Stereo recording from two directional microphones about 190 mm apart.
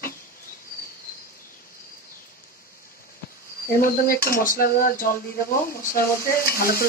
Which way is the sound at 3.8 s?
50° left (ahead or behind).